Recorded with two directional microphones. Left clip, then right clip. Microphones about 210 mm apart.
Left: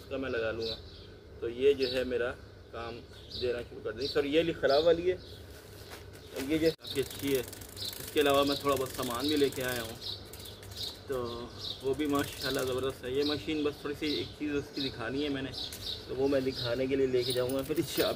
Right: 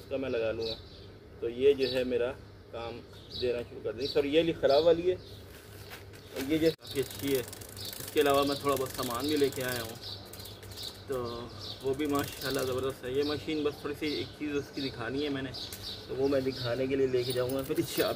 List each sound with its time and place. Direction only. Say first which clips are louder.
0.1 s a man's voice: right 2 dB; 5° left (ahead or behind)
6.3 s speech: right 1 dB; 5° right (ahead or behind)
11.1 s speech: right 2 dB; 5° left (ahead or behind)